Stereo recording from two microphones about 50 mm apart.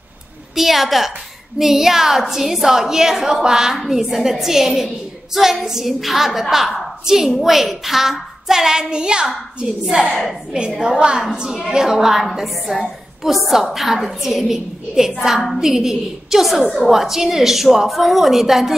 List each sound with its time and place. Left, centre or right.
0.6 s a woman's voice: centre